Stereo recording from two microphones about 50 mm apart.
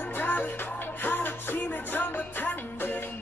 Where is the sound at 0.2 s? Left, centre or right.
Left.